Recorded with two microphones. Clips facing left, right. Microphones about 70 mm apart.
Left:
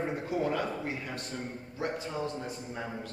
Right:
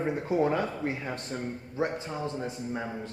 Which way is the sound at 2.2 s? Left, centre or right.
Right.